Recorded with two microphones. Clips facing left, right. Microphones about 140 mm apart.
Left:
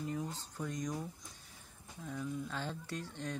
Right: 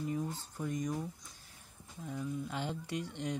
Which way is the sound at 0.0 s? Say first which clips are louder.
Right 3 dB; 5° right (ahead or behind).